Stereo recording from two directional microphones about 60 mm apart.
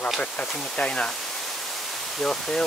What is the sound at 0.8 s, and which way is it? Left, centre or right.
Speech, centre.